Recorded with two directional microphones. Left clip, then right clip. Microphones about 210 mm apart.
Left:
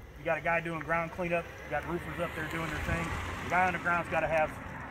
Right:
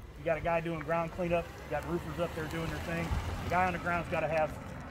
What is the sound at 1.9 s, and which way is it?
Speech, 60° right (ahead or behind).